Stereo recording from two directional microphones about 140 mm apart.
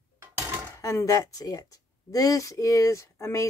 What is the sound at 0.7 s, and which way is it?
Speech, 20° left (ahead or behind).